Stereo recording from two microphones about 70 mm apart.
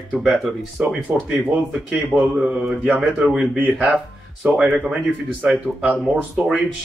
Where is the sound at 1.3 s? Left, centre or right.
Right.